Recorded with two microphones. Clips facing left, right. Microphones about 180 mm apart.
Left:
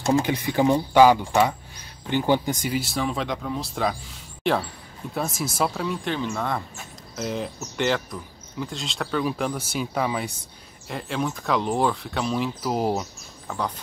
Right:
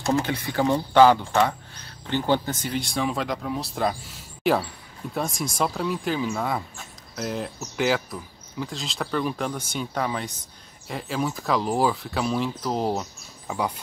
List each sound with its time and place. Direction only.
0.0 s speech: 20° left (ahead or behind)
13.5 s speech: 10° right (ahead or behind)